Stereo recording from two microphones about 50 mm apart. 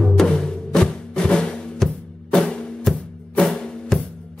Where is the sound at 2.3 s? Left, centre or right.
Centre.